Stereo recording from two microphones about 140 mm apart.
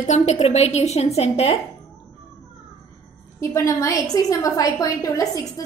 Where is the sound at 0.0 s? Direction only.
55° left (ahead or behind).